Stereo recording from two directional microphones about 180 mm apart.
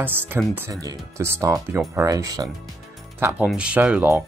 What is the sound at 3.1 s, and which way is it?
Speech, 10° right (ahead or behind).